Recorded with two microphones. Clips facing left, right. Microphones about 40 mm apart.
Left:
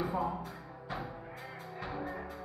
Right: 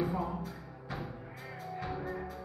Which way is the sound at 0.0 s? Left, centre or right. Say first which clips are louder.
Even; left.